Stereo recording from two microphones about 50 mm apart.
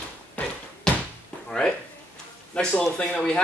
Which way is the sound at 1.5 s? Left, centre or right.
Centre.